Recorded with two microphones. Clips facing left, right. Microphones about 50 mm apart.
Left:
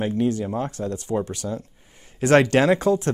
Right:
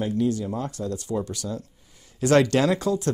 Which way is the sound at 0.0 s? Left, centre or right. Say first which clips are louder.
Left 2 dB; left.